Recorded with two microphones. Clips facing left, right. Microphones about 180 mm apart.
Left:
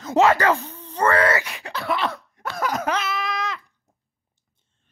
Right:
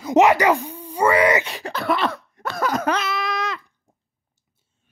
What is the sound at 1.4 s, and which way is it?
Groan, 35° right (ahead or behind).